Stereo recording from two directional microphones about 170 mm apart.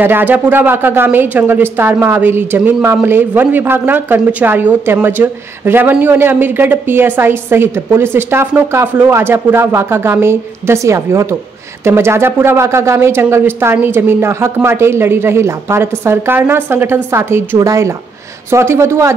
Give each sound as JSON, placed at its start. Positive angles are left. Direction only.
{"t": 0.0, "sound": "speech", "side_deg": -10}